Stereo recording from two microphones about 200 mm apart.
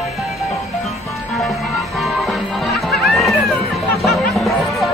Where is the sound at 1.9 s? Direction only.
Centre (ahead or behind).